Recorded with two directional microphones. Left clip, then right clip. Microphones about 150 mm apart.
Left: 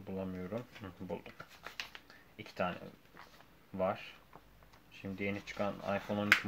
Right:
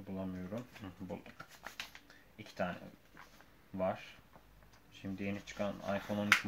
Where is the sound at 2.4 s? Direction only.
45° left (ahead or behind).